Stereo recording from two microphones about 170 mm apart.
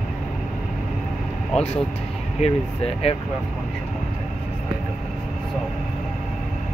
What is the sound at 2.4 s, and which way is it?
Speech, 35° left (ahead or behind).